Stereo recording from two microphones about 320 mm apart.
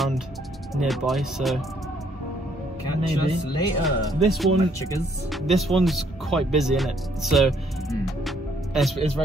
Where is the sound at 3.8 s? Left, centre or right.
Centre.